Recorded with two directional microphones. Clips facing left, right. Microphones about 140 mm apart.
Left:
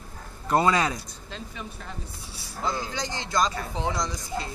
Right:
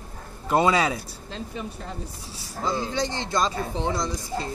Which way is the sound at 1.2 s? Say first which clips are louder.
Right 6 dB; 35° right (ahead or behind).